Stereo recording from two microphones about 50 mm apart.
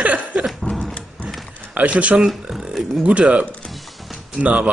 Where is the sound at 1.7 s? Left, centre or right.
Right.